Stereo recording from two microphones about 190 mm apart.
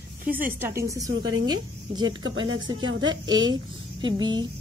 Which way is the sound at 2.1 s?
90° right.